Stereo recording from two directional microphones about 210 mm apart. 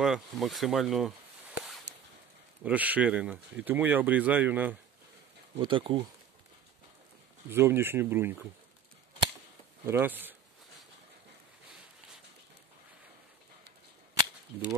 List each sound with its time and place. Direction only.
0.0 s speech: centre (ahead or behind)
2.6 s speech: 5° right (ahead or behind)
5.6 s speech: 25° right (ahead or behind)
7.4 s speech: 10° right (ahead or behind)
9.8 s speech: 10° right (ahead or behind)